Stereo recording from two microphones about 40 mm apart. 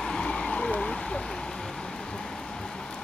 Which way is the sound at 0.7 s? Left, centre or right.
Left.